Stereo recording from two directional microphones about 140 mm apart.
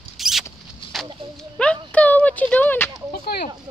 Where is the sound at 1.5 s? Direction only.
10° left (ahead or behind).